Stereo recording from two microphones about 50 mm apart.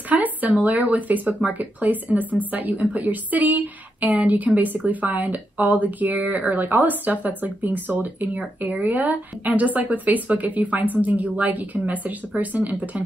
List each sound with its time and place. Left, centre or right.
0.1 s a woman's voice: right